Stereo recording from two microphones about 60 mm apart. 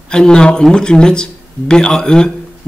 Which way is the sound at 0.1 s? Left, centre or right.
Centre.